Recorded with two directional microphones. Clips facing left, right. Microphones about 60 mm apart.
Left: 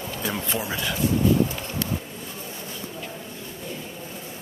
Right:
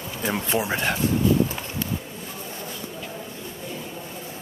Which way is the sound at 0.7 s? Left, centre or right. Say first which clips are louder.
Right 2 dB; right.